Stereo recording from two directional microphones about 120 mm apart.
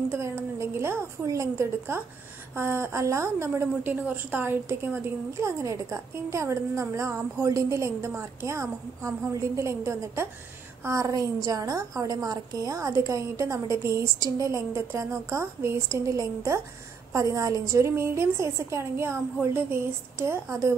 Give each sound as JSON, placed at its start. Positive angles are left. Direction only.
{"t": 0.1, "sound": "a woman's voice", "side_deg": -20}